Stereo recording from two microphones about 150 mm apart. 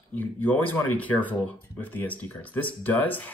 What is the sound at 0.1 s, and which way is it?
Speech, 10° left (ahead or behind).